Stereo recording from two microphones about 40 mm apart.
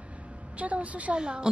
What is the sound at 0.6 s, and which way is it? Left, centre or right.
Speech, right.